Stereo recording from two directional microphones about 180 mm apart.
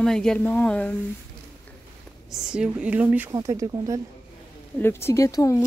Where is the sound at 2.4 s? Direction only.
5° right (ahead or behind).